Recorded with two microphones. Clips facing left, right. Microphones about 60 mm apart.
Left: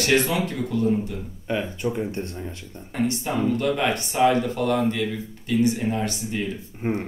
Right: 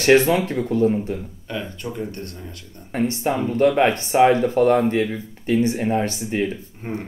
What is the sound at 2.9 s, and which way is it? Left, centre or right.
Speech, right.